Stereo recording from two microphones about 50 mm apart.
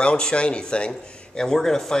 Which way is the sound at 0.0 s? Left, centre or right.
Centre.